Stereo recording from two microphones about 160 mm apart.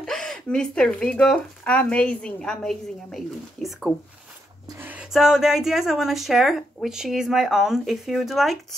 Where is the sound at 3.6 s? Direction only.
Centre (ahead or behind).